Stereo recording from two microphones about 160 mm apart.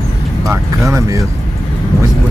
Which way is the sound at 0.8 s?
20° right (ahead or behind).